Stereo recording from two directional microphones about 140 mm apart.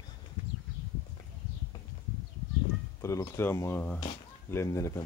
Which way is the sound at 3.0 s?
20° left (ahead or behind).